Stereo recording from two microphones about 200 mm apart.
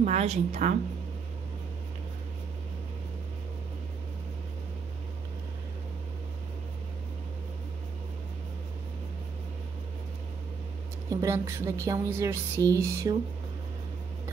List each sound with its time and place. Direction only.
0.0 s a woman's voice: 30° right (ahead or behind)
11.1 s speech: 15° right (ahead or behind)